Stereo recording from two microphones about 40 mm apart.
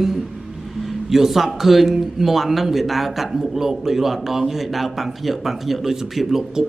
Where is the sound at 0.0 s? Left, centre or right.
Centre.